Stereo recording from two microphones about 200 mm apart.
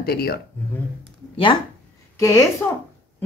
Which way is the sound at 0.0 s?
50° left (ahead or behind).